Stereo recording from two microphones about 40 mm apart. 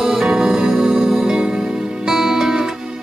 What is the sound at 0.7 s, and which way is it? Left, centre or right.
Music, centre.